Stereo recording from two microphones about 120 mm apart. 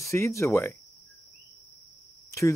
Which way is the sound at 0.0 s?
25° left (ahead or behind).